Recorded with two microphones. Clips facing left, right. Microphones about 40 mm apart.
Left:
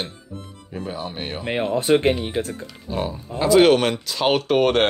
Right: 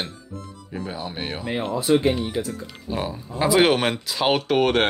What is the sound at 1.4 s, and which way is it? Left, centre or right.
Speech, left.